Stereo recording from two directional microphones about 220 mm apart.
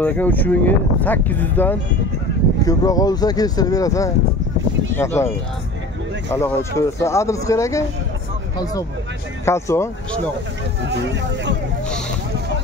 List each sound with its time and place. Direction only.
0.0 s speech: 10° left (ahead or behind)
6.3 s speech: 15° left (ahead or behind)
9.4 s speech: 10° left (ahead or behind)